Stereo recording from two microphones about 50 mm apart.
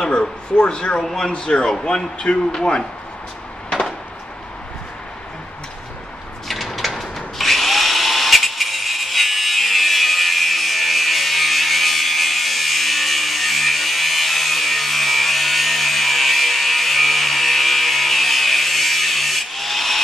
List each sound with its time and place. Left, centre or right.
0.0 s speech: centre
6.4 s drill: centre